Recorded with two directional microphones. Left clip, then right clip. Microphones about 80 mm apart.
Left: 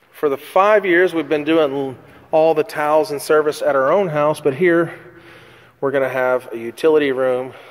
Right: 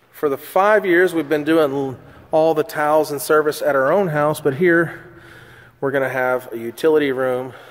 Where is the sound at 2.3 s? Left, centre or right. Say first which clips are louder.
Left 2 dB; right.